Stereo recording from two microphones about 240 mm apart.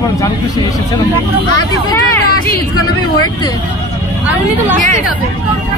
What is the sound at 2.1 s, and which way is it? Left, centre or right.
Speech, centre.